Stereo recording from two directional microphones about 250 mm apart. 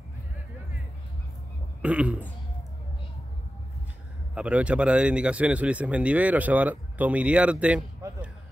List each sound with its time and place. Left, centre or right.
1.8 s speech: centre
4.4 s speech: centre